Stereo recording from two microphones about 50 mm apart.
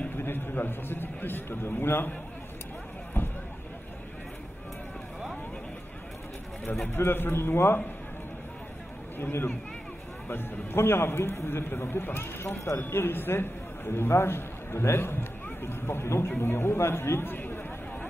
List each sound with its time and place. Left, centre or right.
0.2 s a man's voice: left
3.2 s a sound: left
6.9 s speech: left
9.2 s speech: left
12.9 s a man's voice: left